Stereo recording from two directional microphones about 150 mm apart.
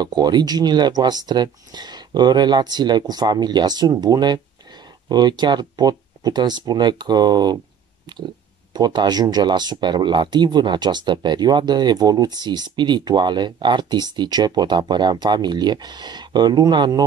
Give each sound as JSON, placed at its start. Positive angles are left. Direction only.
{"t": 0.0, "sound": "speech", "side_deg": -25}
{"t": 8.7, "sound": "speech", "side_deg": -25}